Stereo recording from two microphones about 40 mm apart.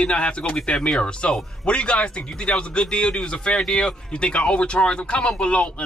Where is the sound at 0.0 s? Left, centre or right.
Left.